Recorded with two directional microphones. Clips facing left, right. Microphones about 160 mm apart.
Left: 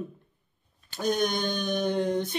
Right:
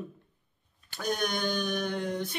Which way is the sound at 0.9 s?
20° left (ahead or behind).